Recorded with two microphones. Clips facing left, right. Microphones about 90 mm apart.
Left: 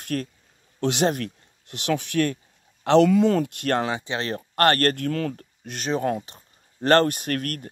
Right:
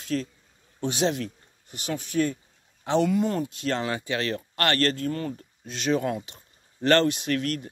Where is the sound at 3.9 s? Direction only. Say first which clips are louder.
Even; 25° left (ahead or behind); by 5.8 s 75° left (ahead or behind).